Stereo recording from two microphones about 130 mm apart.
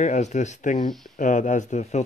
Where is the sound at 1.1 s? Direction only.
80° left; by 2.0 s 60° left (ahead or behind).